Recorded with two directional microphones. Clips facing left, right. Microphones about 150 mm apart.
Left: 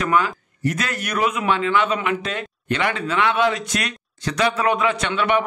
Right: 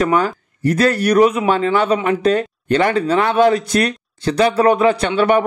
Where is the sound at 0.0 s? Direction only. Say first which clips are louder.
Right 4 dB; 35° right (ahead or behind).